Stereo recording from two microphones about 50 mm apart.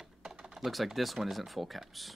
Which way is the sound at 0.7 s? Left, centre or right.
Centre.